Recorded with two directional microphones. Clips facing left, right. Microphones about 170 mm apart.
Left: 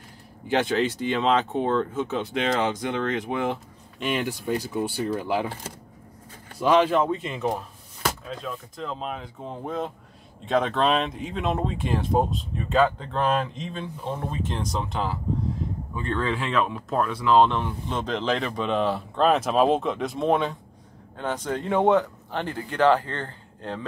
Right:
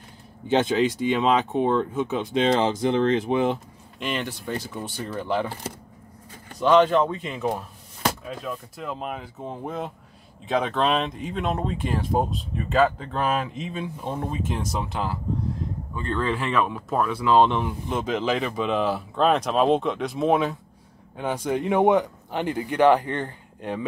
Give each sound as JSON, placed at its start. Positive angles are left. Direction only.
{"t": 0.5, "sound": "speech", "side_deg": -20}
{"t": 4.0, "sound": "speech", "side_deg": 10}
{"t": 6.6, "sound": "speech", "side_deg": 5}